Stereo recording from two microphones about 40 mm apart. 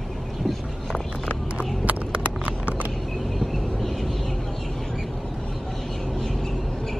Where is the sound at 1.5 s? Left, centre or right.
Right.